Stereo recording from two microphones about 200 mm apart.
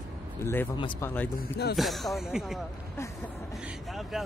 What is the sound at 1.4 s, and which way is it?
Speech, 50° left (ahead or behind).